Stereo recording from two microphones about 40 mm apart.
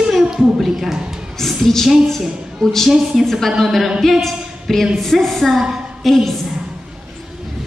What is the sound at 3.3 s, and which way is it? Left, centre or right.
A woman's voice, centre.